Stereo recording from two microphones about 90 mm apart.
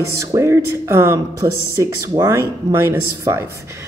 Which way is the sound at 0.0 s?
35° right (ahead or behind).